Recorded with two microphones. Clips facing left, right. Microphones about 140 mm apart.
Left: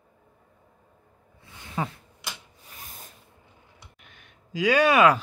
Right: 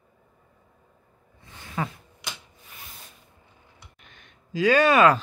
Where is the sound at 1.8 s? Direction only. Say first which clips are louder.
Even; 20° left (ahead or behind).